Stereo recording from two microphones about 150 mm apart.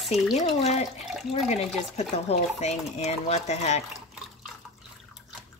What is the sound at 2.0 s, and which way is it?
Speech, 45° left (ahead or behind).